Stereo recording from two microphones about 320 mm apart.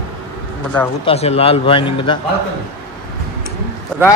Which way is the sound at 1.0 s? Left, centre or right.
Centre.